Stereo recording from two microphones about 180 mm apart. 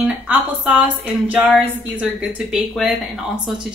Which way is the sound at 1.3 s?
5° right (ahead or behind).